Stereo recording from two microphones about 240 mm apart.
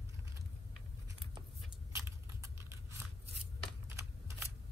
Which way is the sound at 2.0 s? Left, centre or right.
Centre.